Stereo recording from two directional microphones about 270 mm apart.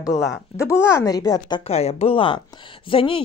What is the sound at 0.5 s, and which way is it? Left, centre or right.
Speech, centre.